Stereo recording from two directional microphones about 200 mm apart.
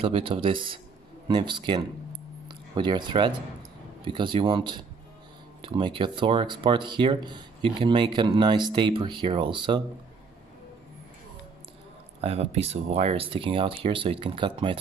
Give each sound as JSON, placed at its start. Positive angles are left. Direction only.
{"t": 0.0, "sound": "speech", "side_deg": -25}
{"t": 12.2, "sound": "speech", "side_deg": -30}